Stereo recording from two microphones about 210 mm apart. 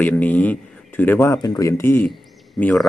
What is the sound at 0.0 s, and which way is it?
A man's voice, 10° left (ahead or behind).